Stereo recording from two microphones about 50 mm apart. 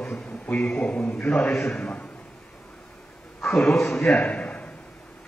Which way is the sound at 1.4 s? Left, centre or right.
Left.